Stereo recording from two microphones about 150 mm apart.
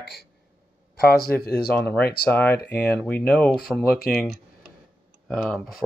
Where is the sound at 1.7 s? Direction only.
10° left (ahead or behind).